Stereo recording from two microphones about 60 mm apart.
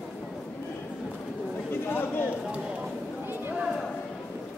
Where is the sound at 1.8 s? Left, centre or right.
Left.